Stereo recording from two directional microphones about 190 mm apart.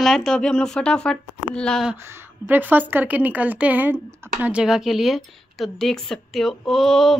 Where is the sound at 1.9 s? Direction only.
10° right (ahead or behind).